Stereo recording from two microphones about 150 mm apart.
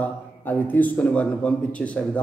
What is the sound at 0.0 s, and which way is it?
A man's voice, 10° left (ahead or behind).